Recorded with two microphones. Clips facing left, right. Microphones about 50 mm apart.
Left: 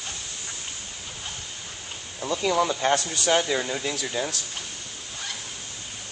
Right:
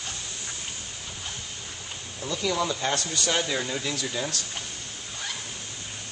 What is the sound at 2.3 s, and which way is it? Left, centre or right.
Speech, left.